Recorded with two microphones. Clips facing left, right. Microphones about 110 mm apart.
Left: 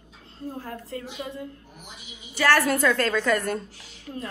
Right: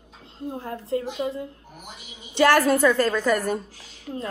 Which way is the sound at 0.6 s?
30° right (ahead or behind).